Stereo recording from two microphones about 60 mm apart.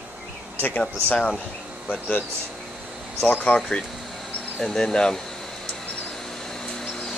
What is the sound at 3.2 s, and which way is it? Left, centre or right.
Speech, left.